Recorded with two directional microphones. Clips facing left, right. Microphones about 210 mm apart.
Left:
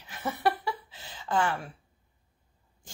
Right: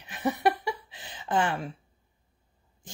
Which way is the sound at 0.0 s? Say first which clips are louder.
Right 3 dB; 15° right (ahead or behind).